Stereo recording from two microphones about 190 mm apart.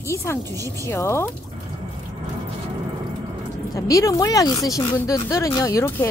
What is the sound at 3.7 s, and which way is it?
Speech, 15° left (ahead or behind).